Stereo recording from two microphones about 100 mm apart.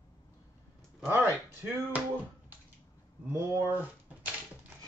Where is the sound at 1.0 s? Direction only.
20° right (ahead or behind).